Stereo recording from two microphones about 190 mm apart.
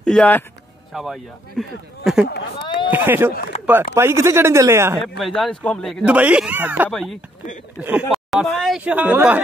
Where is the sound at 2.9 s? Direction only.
10° right (ahead or behind).